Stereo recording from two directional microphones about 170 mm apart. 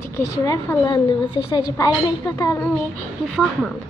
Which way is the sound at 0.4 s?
20° left (ahead or behind).